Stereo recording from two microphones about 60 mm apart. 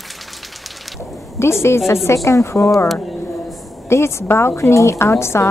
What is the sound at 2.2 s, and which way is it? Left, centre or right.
Speech, left.